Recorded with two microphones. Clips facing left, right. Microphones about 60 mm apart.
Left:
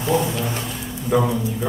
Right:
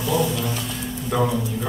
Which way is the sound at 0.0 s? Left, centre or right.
Left.